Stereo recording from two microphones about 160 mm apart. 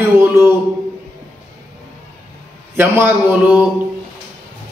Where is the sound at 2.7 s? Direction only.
15° right (ahead or behind).